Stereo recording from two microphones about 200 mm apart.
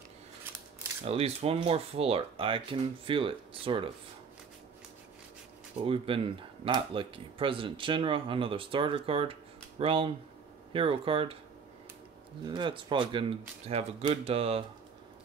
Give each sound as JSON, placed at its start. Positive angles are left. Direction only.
{"t": 1.0, "sound": "speech", "side_deg": -30}
{"t": 5.8, "sound": "speech", "side_deg": -25}
{"t": 12.4, "sound": "speech", "side_deg": -25}